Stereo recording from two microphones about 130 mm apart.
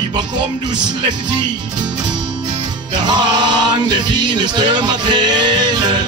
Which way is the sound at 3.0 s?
35° right (ahead or behind).